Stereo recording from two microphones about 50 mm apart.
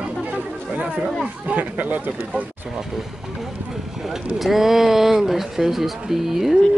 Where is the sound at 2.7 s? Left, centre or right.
Centre.